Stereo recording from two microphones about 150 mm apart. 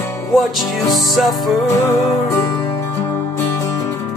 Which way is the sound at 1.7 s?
20° left (ahead or behind).